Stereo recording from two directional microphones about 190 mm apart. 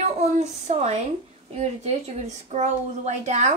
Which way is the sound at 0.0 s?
35° right (ahead or behind).